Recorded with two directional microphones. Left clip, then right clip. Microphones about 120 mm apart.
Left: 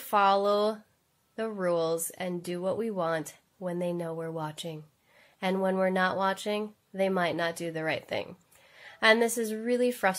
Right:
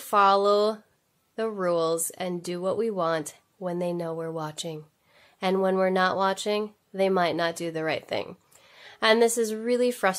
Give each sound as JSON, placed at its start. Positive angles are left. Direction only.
{"t": 0.0, "sound": "speech", "side_deg": -35}